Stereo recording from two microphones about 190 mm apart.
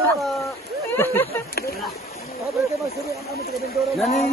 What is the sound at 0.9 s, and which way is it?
Speech, 10° left (ahead or behind).